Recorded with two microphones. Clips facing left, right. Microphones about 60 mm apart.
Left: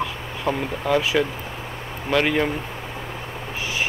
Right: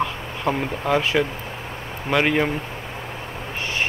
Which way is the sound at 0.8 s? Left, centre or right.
Centre.